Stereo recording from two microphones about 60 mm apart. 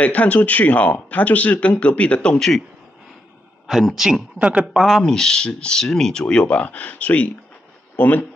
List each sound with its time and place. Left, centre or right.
0.0 s speech: left
2.3 s speech: centre
3.9 s speech: centre
4.4 s speech: centre
5.0 s speech: centre; by 8.3 s left